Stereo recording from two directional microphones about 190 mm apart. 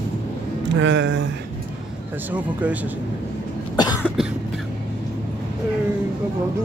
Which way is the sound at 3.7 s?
20° left (ahead or behind).